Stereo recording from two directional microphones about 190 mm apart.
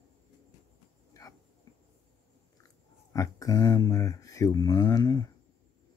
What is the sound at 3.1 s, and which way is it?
Speech, 15° left (ahead or behind).